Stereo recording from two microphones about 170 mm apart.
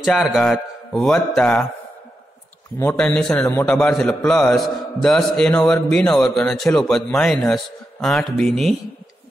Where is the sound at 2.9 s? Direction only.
5° left (ahead or behind).